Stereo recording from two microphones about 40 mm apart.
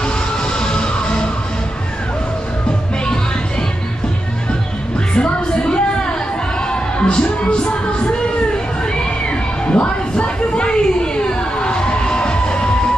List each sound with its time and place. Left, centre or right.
0.0 s music: left
5.1 s music: left
8.9 s a sound: left